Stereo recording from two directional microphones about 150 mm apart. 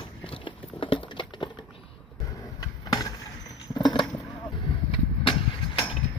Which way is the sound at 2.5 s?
25° left (ahead or behind).